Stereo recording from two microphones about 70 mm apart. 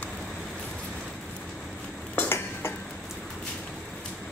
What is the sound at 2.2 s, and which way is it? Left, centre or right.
Stir, left.